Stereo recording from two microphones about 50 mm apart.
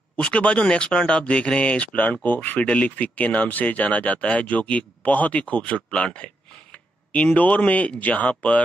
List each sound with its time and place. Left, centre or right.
0.2 s speech: left
2.7 s speech: left
5.9 s a sound: left
7.3 s speech: left